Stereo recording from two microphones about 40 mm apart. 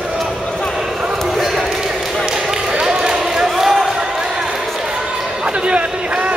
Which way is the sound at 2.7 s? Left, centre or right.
Right.